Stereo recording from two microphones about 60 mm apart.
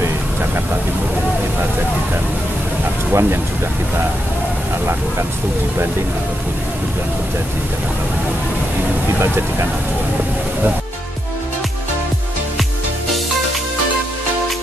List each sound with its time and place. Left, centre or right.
3.1 s speech: right